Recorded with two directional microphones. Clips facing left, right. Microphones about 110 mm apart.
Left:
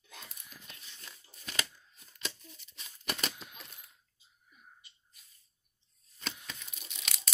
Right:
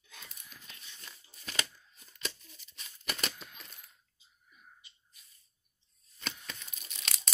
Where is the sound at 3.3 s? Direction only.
10° left (ahead or behind).